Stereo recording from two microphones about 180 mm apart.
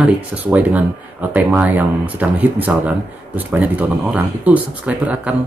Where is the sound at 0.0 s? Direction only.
10° right (ahead or behind).